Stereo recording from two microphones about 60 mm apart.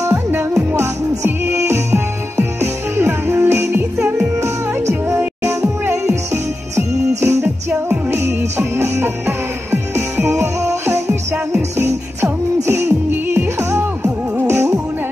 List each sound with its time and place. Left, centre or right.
0.3 s music: right
5.1 s music: right
5.9 s music: right
7.2 s music: right
8.1 s music: right
10.4 s music: right